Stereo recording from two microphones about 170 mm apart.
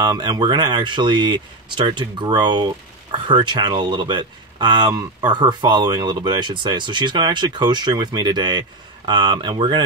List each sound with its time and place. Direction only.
0.0 s speech: 25° right (ahead or behind)